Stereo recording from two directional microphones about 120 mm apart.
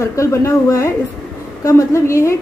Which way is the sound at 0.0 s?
25° left (ahead or behind).